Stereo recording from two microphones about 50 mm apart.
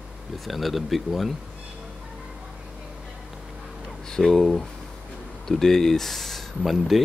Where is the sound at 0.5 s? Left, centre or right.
Centre.